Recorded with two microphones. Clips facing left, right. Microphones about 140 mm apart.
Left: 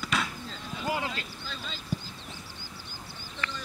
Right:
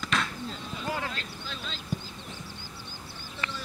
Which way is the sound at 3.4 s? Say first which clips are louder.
Even; 20° right (ahead or behind).